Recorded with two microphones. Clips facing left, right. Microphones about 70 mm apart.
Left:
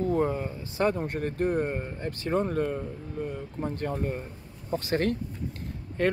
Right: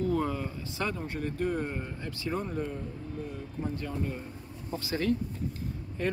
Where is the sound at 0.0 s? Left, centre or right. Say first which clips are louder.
Left 3 dB; left.